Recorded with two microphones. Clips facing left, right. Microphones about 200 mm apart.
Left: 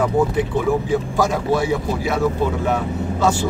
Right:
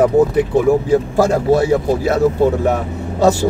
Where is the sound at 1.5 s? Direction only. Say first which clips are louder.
Right 6 dB; 45° right (ahead or behind).